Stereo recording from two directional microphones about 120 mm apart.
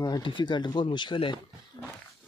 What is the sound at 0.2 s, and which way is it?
Speech, 40° left (ahead or behind).